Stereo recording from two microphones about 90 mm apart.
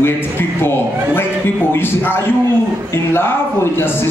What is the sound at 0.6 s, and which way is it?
Speech, 25° left (ahead or behind).